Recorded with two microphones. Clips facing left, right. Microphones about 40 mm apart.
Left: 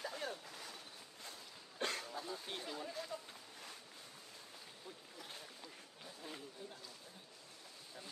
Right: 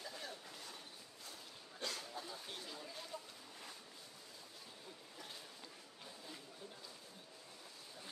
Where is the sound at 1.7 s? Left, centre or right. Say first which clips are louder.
Left 5 dB; left.